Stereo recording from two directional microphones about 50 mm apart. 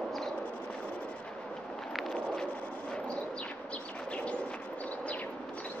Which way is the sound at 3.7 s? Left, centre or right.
Left.